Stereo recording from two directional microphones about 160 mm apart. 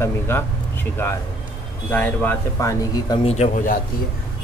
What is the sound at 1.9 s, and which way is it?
Speech, 10° left (ahead or behind).